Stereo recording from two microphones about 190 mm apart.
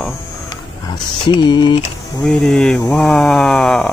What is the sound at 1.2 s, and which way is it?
Speech, 25° left (ahead or behind).